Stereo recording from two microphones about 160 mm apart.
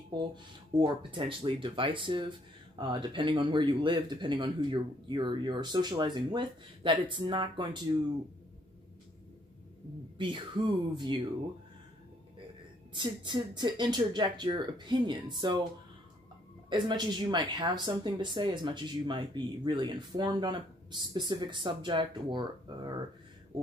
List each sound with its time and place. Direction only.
0.7 s speech: 30° right (ahead or behind)
10.1 s speech: 30° right (ahead or behind)
12.9 s speech: 30° right (ahead or behind)
16.6 s speech: 30° right (ahead or behind)